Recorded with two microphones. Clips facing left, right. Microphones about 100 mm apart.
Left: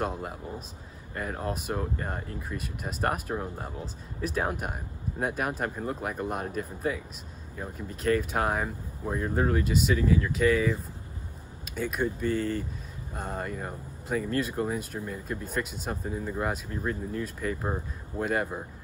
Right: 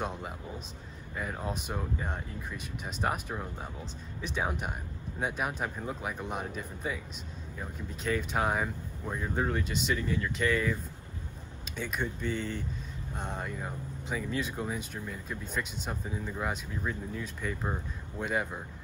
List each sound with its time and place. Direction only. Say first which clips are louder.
0.0 s speech: left 4 dB; centre (ahead or behind)